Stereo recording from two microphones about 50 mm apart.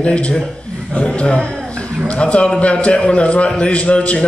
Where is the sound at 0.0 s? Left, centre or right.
Left.